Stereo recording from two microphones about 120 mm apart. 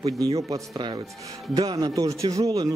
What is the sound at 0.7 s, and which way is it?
Speech, 40° right (ahead or behind).